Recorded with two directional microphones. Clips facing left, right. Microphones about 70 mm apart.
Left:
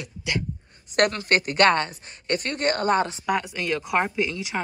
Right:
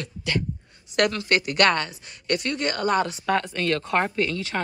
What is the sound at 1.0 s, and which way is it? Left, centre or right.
A woman's voice, left.